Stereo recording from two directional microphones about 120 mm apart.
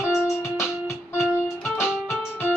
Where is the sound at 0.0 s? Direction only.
25° left (ahead or behind).